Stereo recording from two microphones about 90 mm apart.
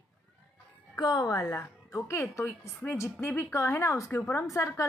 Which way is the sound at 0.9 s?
50° left (ahead or behind).